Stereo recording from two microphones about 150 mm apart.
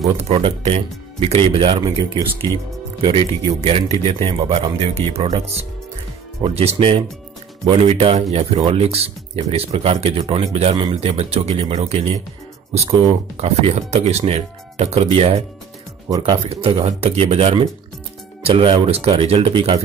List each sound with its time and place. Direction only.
0.2 s speech: 40° right (ahead or behind)
6.4 s speech: 45° right (ahead or behind)
13.4 s speech: 45° right (ahead or behind)